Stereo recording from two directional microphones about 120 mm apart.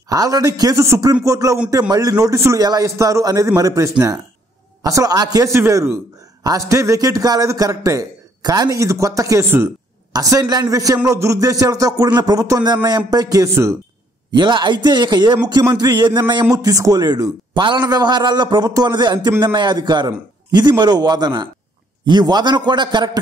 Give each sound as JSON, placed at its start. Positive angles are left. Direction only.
{"t": 0.1, "sound": "a man's voice", "side_deg": -30}
{"t": 14.3, "sound": "a man's voice", "side_deg": -40}